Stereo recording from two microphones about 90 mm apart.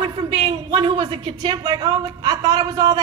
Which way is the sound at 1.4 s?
50° right (ahead or behind).